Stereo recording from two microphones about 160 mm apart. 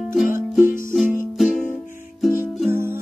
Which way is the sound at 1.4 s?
Centre (ahead or behind).